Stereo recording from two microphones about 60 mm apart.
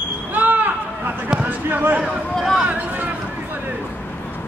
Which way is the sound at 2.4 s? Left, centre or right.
Centre.